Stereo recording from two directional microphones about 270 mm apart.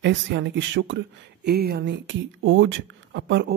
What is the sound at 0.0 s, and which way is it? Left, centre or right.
Speech, right.